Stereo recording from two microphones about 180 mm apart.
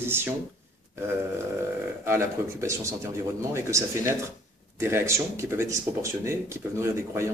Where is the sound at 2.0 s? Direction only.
15° right (ahead or behind).